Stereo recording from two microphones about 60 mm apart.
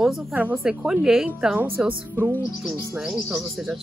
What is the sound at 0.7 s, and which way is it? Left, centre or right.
Speech, centre.